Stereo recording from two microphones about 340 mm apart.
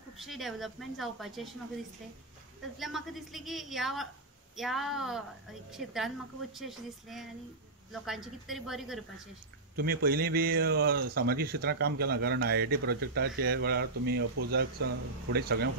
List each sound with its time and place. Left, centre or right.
0.2 s a woman's voice: centre
2.8 s a woman's voice: centre
9.8 s speech: right